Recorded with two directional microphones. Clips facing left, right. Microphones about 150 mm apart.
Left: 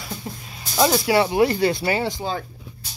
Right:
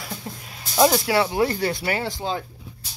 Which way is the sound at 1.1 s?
15° left (ahead or behind).